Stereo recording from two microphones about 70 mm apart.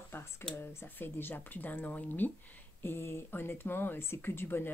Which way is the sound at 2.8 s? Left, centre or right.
Left.